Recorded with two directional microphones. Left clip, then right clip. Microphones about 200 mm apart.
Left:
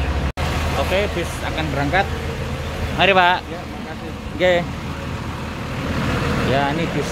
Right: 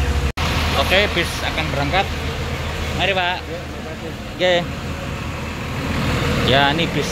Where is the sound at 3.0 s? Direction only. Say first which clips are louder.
Left 6 dB; 30° left (ahead or behind).